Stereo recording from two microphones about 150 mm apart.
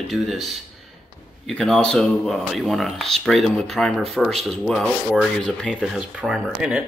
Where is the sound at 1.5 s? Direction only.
5° left (ahead or behind).